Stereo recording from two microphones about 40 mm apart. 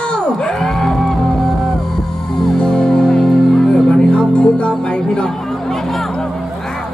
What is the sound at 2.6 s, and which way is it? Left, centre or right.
Music, left.